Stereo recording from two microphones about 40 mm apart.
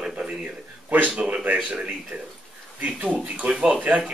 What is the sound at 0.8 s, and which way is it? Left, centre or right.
Speech, right.